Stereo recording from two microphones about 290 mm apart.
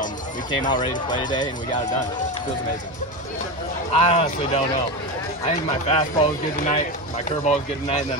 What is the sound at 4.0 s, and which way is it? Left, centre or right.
Speech, left.